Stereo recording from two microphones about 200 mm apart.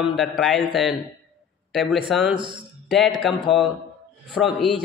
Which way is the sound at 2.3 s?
25° right (ahead or behind).